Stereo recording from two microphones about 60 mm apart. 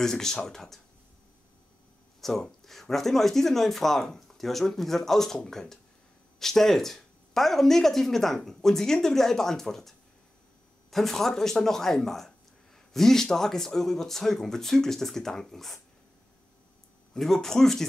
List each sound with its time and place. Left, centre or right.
0.0 s speech: centre
2.2 s speech: centre
17.1 s speech: centre